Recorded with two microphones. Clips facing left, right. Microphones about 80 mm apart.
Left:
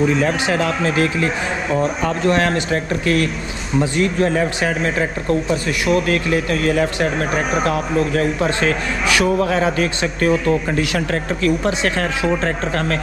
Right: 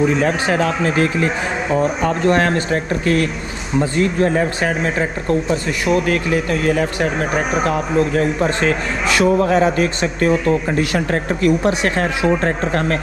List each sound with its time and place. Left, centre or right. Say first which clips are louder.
0.2 s speech: right 1 dB; right
3.9 s speech: right 2 dB; right
8.5 s speech: right 1 dB; right
11.4 s speech: right 2 dB; right